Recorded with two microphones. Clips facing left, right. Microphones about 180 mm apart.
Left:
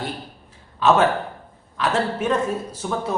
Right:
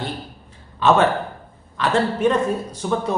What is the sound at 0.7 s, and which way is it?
A man's voice, 5° left (ahead or behind).